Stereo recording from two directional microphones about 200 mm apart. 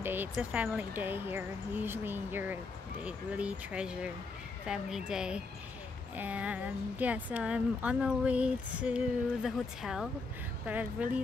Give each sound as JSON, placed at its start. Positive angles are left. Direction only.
{"t": 0.0, "sound": "speech", "side_deg": -10}